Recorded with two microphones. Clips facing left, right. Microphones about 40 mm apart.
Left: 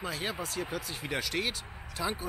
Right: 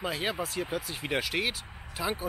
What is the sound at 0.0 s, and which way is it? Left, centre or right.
Speech, centre.